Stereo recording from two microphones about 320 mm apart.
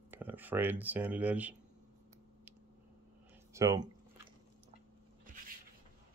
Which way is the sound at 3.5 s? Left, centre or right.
Centre.